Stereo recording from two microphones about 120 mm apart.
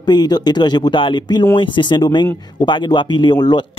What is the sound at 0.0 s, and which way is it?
Speech, 35° left (ahead or behind).